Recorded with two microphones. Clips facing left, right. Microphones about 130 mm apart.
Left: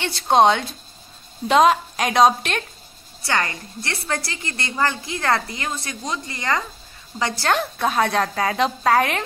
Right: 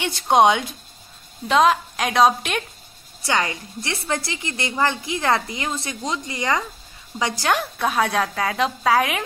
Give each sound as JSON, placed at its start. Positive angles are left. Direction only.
{"t": 0.0, "sound": "a woman's voice", "side_deg": -15}
{"t": 1.5, "sound": "a woman's voice", "side_deg": 0}
{"t": 3.3, "sound": "a woman's voice", "side_deg": -15}